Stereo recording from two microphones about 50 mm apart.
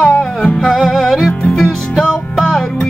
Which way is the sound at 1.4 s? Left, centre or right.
Centre.